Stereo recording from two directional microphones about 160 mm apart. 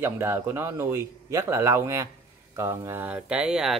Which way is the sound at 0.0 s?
15° right (ahead or behind).